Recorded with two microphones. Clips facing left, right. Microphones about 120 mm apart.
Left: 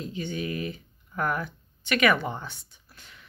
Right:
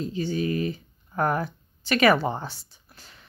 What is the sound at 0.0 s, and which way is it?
Speech, 35° right (ahead or behind).